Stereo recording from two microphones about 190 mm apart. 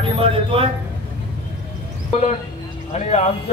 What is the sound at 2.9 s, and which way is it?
Speech, 35° left (ahead or behind).